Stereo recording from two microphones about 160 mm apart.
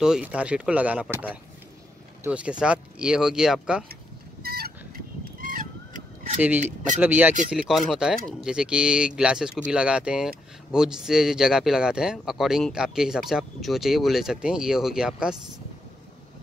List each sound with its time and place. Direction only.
0.0 s speech: 5° right (ahead or behind)
3.9 s fowl: 80° right; by 6.0 s 60° right (ahead or behind)
6.4 s speech: 10° right (ahead or behind)